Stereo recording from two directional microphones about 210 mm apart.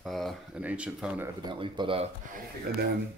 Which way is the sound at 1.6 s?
25° right (ahead or behind).